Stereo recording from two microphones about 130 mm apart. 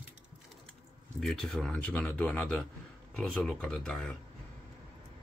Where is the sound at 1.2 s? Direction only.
5° left (ahead or behind).